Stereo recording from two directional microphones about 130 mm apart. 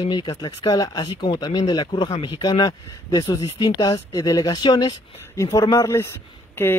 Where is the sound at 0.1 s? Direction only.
35° left (ahead or behind).